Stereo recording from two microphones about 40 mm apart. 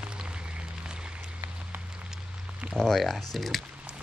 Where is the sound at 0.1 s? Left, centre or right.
Right.